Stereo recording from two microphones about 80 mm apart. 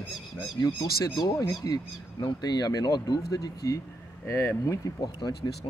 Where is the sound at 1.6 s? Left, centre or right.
Left.